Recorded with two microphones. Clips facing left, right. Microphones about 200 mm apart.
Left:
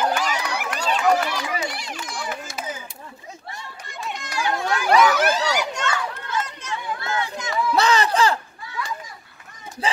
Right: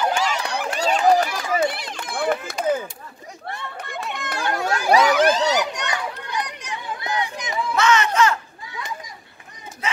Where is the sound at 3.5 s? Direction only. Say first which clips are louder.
Right 9 dB; 60° right (ahead or behind).